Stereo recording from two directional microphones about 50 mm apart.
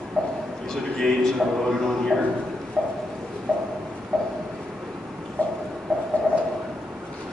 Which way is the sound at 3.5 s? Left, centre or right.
Left.